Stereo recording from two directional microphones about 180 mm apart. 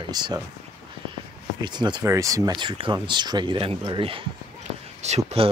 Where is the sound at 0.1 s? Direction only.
20° right (ahead or behind).